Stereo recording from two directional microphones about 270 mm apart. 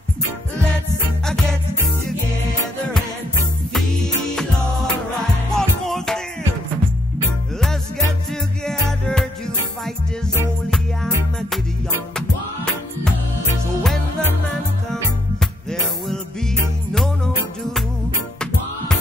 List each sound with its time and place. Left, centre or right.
1.2 s music: centre
3.7 s music: centre
5.5 s music: centre
8.6 s music: centre
14.9 s music: centre